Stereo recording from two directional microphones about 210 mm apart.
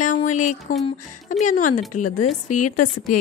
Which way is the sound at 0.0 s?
35° left (ahead or behind).